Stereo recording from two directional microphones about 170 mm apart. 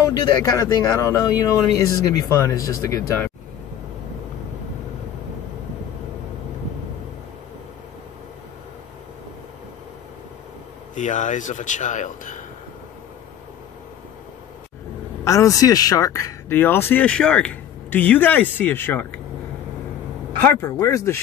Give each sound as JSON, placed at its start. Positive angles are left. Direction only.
{"t": 0.0, "sound": "speech", "side_deg": 25}
{"t": 11.0, "sound": "speech", "side_deg": 45}
{"t": 15.2, "sound": "speech", "side_deg": 20}
{"t": 20.3, "sound": "speech", "side_deg": 15}